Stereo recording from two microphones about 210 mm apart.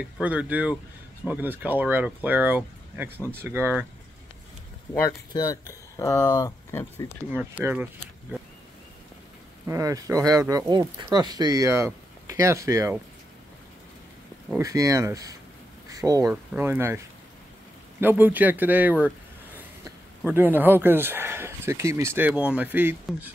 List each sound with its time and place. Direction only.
0.0 s speech: 5° right (ahead or behind)
5.3 s speech: 20° left (ahead or behind)
7.3 s speech: 10° right (ahead or behind)
9.7 s speech: 15° right (ahead or behind)
14.6 s speech: 15° right (ahead or behind)
18.0 s speech: 10° right (ahead or behind)